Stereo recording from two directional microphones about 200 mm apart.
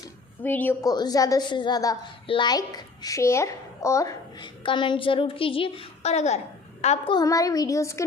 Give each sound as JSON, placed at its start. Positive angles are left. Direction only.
{"t": 0.4, "sound": "a woman's voice", "side_deg": 10}
{"t": 7.2, "sound": "a woman's voice", "side_deg": 15}